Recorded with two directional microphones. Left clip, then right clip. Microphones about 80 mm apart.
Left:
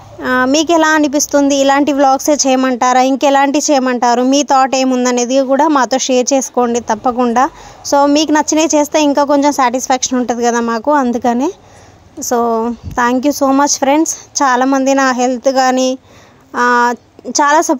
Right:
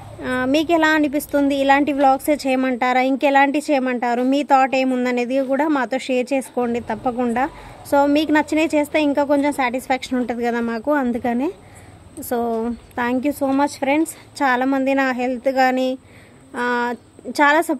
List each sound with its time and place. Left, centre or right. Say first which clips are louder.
0.2 s a woman's voice: left 8 dB; left
5.8 s speech: left 9 dB; left
7.9 s a woman's voice: left 6 dB; left
10.2 s speech: left 8 dB; left
10.7 s a woman's voice: left 8 dB; left
11.0 s speech: left 8 dB; left
12.3 s a woman's voice: left 8 dB; left
16.9 s a woman's voice: left 9 dB; left